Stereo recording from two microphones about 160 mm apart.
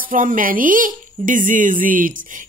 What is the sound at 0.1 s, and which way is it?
Speech, 55° right (ahead or behind).